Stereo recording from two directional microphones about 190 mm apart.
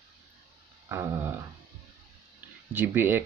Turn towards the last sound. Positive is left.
turn(degrees=-10)  # may be behind; listen again after turning